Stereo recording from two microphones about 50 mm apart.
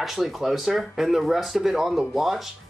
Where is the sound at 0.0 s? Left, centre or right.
Centre.